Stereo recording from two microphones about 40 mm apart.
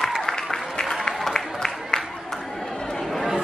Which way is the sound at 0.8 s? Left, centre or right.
Centre.